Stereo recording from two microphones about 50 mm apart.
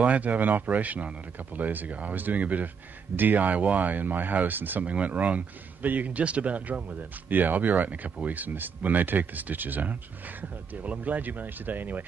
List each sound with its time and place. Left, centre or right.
0.0 s speech: right
4.8 s speech: right